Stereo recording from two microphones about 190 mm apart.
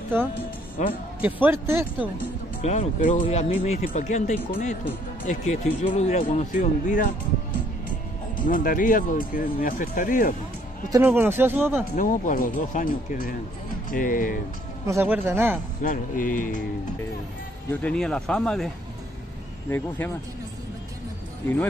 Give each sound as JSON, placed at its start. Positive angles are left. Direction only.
{"t": 1.2, "sound": "speech", "side_deg": -10}
{"t": 2.6, "sound": "speech", "side_deg": 35}
{"t": 8.4, "sound": "speech", "side_deg": 45}
{"t": 10.9, "sound": "speech", "side_deg": -10}
{"t": 11.9, "sound": "speech", "side_deg": 45}
{"t": 14.9, "sound": "speech", "side_deg": -10}
{"t": 15.8, "sound": "speech", "side_deg": 45}
{"t": 17.6, "sound": "speech", "side_deg": 5}